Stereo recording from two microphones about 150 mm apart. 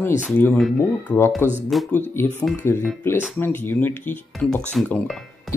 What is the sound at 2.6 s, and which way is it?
Speech, 15° left (ahead or behind).